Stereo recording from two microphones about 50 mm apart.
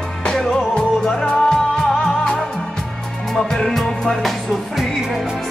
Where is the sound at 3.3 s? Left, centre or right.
Centre.